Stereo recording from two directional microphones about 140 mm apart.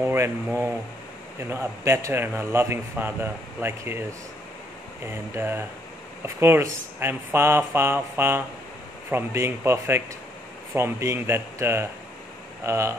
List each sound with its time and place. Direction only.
0.0 s a sound: 15° right (ahead or behind)
1.5 s a man's voice: 20° right (ahead or behind)
5.0 s a man's voice: 15° right (ahead or behind)